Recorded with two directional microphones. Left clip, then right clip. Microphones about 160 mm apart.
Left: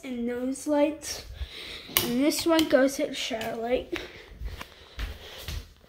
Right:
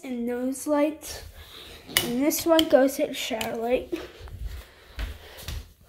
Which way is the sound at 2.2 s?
Centre (ahead or behind).